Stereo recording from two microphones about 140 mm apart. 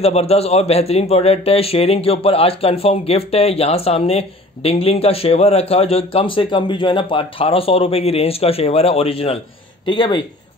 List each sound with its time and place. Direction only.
0.0 s a man's voice: 45° left (ahead or behind)